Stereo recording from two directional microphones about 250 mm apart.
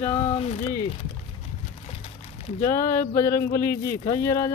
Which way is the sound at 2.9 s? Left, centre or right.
Centre.